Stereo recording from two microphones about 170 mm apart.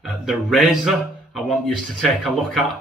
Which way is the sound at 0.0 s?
Centre (ahead or behind).